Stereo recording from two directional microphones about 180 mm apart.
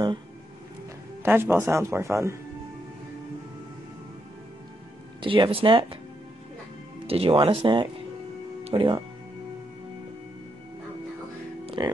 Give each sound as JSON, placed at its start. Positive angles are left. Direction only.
{"t": 1.2, "sound": "speech", "side_deg": -10}
{"t": 5.2, "sound": "speech", "side_deg": -30}
{"t": 7.1, "sound": "speech", "side_deg": -30}
{"t": 11.6, "sound": "music", "side_deg": -25}